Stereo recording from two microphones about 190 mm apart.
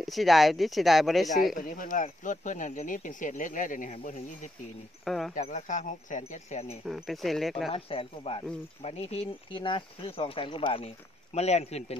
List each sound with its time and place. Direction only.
0.0 s speech: centre (ahead or behind)
1.6 s speech: 45° left (ahead or behind)
5.0 s speech: centre (ahead or behind)
5.3 s speech: 40° left (ahead or behind)
6.9 s speech: centre (ahead or behind)
7.7 s speech: 30° left (ahead or behind)